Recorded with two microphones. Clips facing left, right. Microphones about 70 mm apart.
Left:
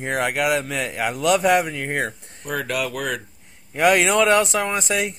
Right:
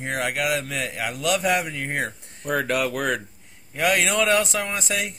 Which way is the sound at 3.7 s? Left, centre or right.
Centre.